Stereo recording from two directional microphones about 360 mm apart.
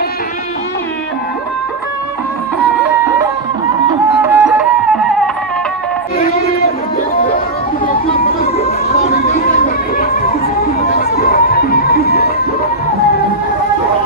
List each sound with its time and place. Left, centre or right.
3.9 s music: centre
7.8 s chatter: left
11.0 s music: left